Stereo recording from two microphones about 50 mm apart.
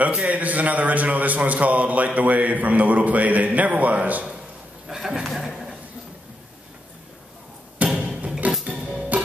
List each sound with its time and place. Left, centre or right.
0.0 s a man's voice: right
4.8 s a sound: centre
5.2 s chuckle: centre
7.8 s music: right
8.7 s music: centre